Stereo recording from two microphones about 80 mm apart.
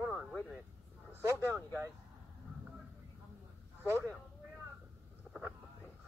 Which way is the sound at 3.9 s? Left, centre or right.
Right.